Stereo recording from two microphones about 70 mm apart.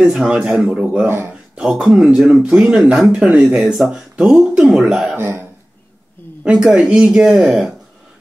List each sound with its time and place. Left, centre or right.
0.0 s speech: centre
1.0 s speech: right
1.5 s speech: centre
5.1 s speech: right
6.5 s speech: centre